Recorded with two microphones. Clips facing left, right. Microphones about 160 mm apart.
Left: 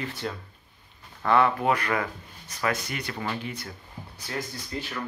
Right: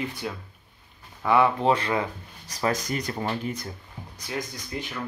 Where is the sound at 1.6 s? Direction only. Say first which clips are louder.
Right 2 dB; 25° right (ahead or behind); by 3.7 s 40° right (ahead or behind).